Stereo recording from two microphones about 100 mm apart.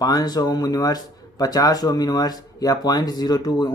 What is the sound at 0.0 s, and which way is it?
Speech, 40° left (ahead or behind).